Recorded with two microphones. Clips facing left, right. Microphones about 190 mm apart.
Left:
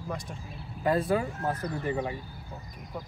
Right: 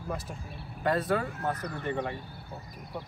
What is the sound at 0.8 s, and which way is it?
Speech, 10° left (ahead or behind).